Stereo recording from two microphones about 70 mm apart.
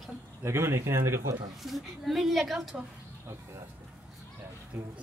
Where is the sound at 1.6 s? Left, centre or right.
Centre.